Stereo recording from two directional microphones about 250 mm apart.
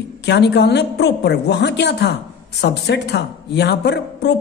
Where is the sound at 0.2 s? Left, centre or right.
Left.